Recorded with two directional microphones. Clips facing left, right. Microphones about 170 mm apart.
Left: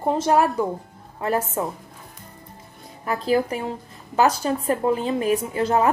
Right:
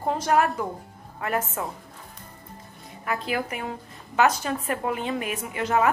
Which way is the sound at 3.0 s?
35° left (ahead or behind).